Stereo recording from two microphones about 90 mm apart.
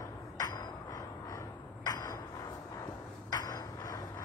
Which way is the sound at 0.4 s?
45° left (ahead or behind).